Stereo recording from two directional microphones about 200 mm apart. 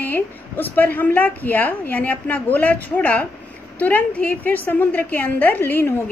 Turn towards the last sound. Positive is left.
turn(degrees=10)  # may be behind; listen again after turning